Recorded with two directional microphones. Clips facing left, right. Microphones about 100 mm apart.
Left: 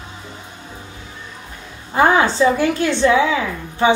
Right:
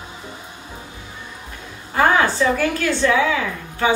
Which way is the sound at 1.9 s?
20° left (ahead or behind).